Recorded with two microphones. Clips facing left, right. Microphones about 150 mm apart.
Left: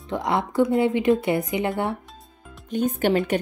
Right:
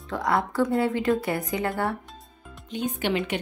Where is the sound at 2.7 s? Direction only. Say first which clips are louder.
Left 5 dB; 45° left (ahead or behind).